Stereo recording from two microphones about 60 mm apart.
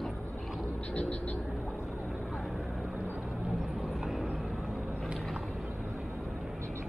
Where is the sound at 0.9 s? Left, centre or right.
Left.